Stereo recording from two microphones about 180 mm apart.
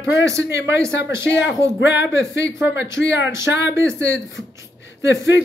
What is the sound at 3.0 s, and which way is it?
Speech, 75° left (ahead or behind).